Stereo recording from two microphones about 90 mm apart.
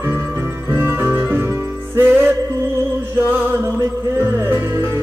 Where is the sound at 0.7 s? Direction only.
25° right (ahead or behind).